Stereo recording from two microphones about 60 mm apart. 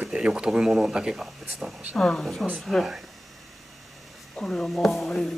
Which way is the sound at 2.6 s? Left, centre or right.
Centre.